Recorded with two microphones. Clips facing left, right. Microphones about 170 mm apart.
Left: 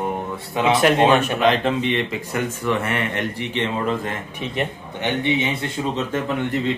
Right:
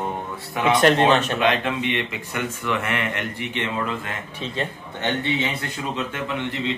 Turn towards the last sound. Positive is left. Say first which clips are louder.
# left 4 dB
turn(degrees=45)  # may be behind; listen again after turning